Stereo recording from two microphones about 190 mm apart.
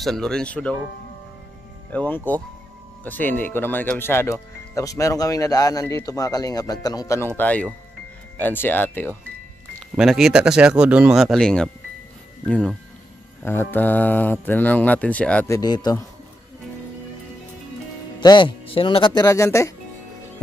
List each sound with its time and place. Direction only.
0.0 s speech: 5° left (ahead or behind)
1.9 s speech: 10° left (ahead or behind)
9.9 s speech: 5° right (ahead or behind); by 16.0 s 20° left (ahead or behind)
18.2 s speech: 25° left (ahead or behind)